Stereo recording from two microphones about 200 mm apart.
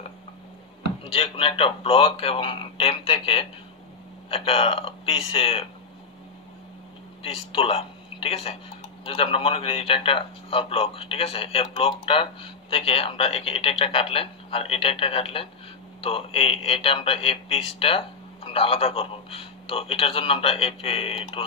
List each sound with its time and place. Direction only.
1.0 s speech: 30° left (ahead or behind)
7.2 s speech: 30° left (ahead or behind)